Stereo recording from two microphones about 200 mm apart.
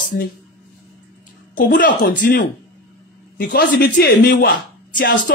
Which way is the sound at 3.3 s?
50° left (ahead or behind).